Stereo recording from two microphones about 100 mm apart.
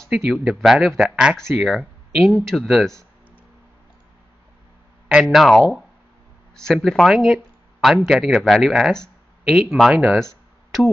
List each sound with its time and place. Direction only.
0.1 s speech: centre (ahead or behind)
5.2 s speech: centre (ahead or behind)
10.1 s a sound: centre (ahead or behind)